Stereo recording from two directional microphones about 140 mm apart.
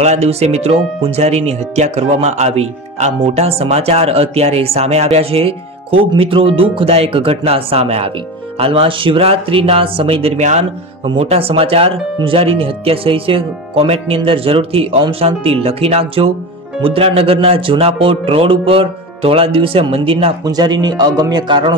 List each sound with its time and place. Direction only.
0.0 s speech: 50° right (ahead or behind)
20.4 s a man's voice: 30° right (ahead or behind)